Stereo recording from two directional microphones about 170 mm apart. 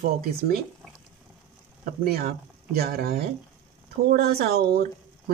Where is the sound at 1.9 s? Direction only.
65° right (ahead or behind).